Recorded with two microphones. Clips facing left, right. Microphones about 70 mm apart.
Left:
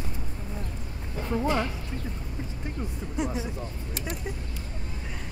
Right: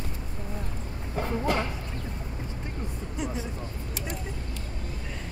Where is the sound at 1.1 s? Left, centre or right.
Right.